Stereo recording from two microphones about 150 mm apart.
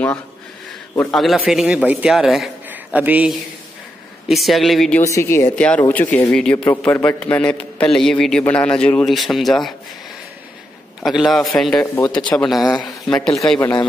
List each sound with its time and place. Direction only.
1.1 s a man's voice: centre (ahead or behind)
4.3 s a man's voice: centre (ahead or behind)
5.0 s a man's voice: 20° left (ahead or behind); by 9.8 s centre (ahead or behind)
11.1 s a man's voice: centre (ahead or behind)
11.8 s a man's voice: 15° left (ahead or behind)
12.4 s a man's voice: centre (ahead or behind)
13.6 s speech: 20° left (ahead or behind)